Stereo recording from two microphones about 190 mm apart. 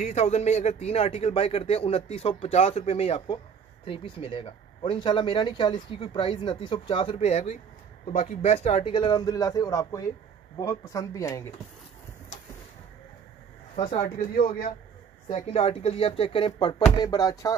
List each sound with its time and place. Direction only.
0.0 s a man's voice: 35° left (ahead or behind); by 11.5 s 15° left (ahead or behind)
14.0 s speech: 45° left (ahead or behind)
15.3 s speech: 30° left (ahead or behind)